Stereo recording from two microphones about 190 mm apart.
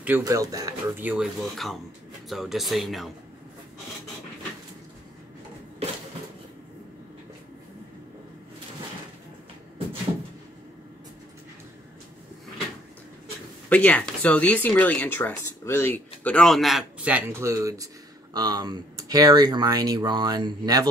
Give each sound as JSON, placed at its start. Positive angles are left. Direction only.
{"t": 0.0, "sound": "speech", "side_deg": -15}
{"t": 13.7, "sound": "speech", "side_deg": 5}